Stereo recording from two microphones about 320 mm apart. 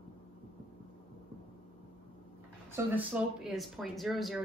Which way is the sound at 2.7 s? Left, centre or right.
Centre.